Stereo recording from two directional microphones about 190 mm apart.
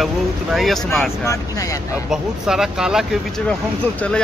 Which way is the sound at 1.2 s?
15° left (ahead or behind).